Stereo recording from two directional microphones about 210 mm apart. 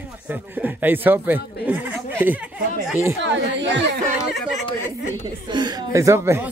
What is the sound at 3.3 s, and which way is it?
Speech, 60° right (ahead or behind).